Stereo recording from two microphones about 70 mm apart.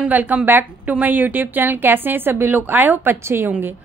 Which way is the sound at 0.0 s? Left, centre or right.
Right.